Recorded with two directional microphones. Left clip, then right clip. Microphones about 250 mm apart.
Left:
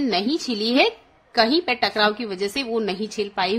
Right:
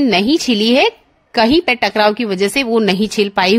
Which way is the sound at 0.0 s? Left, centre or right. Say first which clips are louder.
Right 9 dB; right.